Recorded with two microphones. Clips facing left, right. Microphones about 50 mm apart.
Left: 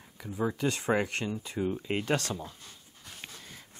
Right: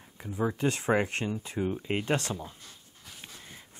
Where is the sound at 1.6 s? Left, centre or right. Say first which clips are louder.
Even; centre.